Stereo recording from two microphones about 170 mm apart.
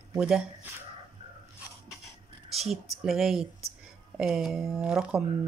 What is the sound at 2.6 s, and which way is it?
Speech, centre (ahead or behind).